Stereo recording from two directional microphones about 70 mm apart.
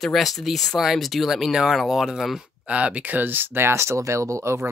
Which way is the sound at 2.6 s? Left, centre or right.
Centre.